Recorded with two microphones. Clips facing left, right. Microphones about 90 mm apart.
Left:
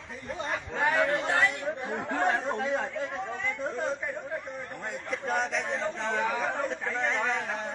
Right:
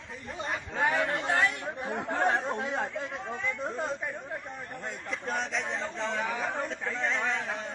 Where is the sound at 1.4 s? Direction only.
20° right (ahead or behind).